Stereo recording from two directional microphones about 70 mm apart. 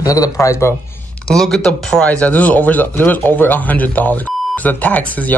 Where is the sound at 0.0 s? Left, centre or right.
Left.